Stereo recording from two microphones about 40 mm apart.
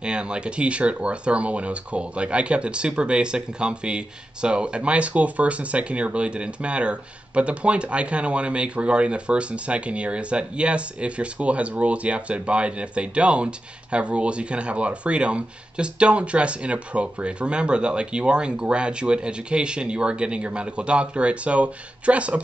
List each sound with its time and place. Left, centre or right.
0.0 s speech: right